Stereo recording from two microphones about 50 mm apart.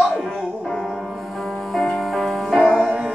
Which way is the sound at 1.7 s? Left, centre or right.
Centre.